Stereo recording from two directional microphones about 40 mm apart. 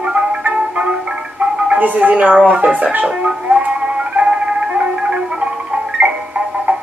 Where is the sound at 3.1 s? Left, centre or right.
Right.